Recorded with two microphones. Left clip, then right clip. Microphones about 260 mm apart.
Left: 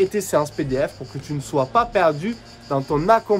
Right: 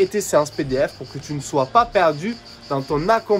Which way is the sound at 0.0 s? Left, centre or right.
Centre.